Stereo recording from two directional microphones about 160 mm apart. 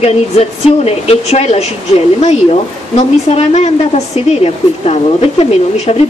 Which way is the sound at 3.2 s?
45° left (ahead or behind).